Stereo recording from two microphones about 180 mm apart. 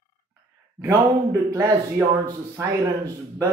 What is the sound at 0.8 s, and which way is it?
A man's voice, 20° right (ahead or behind).